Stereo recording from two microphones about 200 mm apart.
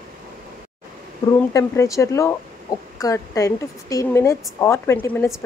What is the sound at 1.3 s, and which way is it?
A woman's voice, 15° left (ahead or behind).